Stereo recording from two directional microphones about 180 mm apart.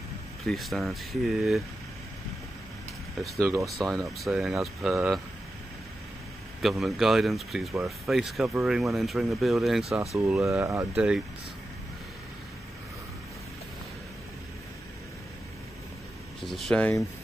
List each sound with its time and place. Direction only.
0.5 s speech: centre (ahead or behind)
3.6 s speech: centre (ahead or behind)
6.6 s speech: centre (ahead or behind)
10.4 s speech: 15° right (ahead or behind)
11.0 s speech: 5° right (ahead or behind)
16.3 s speech: centre (ahead or behind)